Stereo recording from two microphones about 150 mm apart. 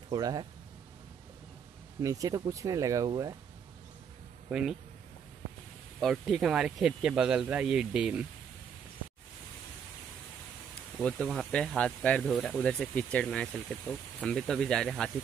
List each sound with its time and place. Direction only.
0.1 s speech: 25° right (ahead or behind)
2.0 s speech: 25° right (ahead or behind)
4.5 s speech: 5° right (ahead or behind)
5.9 s speech: centre (ahead or behind)
11.0 s speech: 5° left (ahead or behind)